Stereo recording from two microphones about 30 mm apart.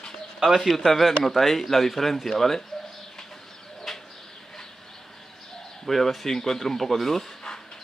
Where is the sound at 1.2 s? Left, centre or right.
Centre.